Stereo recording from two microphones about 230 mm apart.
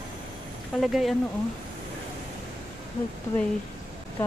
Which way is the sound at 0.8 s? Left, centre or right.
Centre.